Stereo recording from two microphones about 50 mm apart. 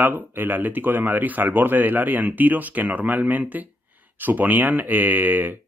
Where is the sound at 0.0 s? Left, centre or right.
Right.